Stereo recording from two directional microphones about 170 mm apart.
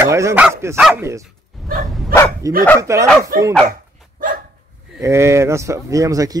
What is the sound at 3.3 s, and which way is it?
Speech, 55° right (ahead or behind).